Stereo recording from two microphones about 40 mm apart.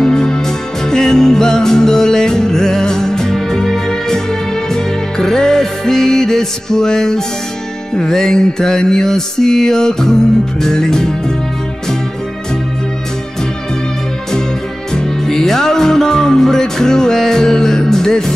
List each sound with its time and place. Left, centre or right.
0.0 s music: centre
15.0 s music: centre